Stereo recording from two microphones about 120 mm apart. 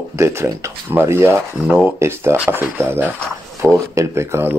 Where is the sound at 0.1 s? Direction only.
20° right (ahead or behind).